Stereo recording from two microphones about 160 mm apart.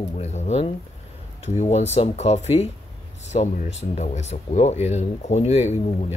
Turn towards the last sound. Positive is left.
turn(degrees=40)  # may be behind; listen again after turning